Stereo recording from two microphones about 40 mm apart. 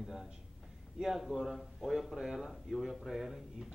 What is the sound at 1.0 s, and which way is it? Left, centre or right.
Speech, centre.